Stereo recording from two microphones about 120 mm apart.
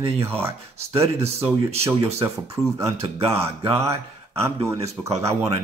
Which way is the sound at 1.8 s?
25° right (ahead or behind).